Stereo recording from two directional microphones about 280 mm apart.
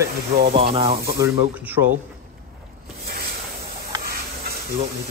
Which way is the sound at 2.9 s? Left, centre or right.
Right.